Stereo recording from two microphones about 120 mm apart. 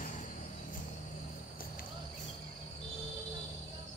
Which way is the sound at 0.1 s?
90° left.